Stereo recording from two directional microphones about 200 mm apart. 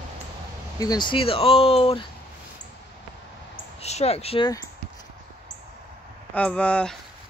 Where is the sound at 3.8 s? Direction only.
30° left (ahead or behind).